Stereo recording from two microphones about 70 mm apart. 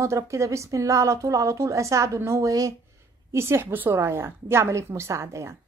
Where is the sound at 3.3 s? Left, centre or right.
Right.